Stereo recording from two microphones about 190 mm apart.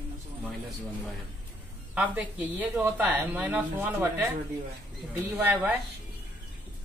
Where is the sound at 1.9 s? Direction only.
5° right (ahead or behind).